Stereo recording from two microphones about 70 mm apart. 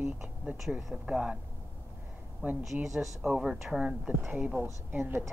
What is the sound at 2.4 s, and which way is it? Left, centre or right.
Speech, right.